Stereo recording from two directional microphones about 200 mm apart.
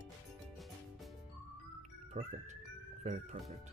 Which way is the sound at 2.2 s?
30° right (ahead or behind).